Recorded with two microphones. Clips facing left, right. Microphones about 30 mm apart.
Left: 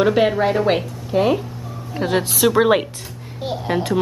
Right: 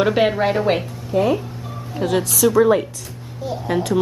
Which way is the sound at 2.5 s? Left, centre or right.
Left.